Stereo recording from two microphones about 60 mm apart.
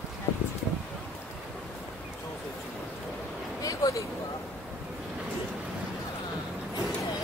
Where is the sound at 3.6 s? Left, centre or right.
Left.